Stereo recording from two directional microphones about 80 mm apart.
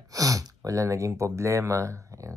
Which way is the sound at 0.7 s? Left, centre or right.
Right.